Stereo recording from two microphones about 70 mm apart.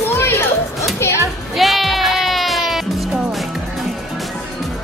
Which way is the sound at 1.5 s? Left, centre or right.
Centre.